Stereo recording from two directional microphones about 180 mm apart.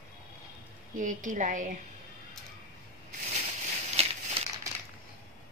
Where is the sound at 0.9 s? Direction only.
45° right (ahead or behind).